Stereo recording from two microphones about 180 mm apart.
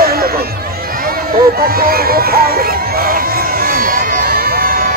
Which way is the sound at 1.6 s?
55° right (ahead or behind).